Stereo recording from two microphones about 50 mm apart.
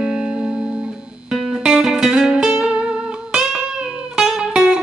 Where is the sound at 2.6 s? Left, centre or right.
Centre.